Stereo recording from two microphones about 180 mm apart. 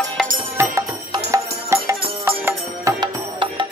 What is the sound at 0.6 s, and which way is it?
Music, 15° right (ahead or behind).